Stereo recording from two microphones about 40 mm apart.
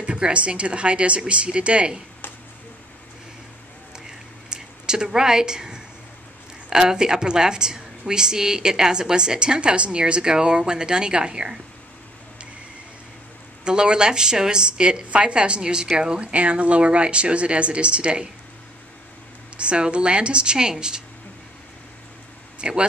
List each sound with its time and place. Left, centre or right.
0.0 s a woman's voice: right
4.5 s a woman's voice: centre
13.7 s a woman's voice: right
19.5 s a woman's voice: right
22.6 s speech: right